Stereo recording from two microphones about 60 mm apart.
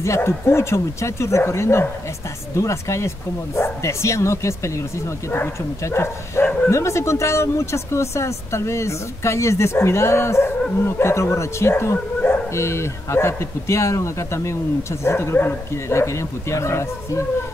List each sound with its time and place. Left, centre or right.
0.0 s speech: left
5.9 s speech: left
15.9 s speech: left